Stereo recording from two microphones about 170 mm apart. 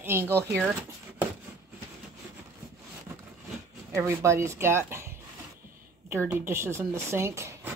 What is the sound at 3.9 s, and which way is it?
Speech, 15° right (ahead or behind).